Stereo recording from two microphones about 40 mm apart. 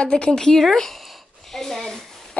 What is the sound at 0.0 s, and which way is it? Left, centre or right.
Speech, left.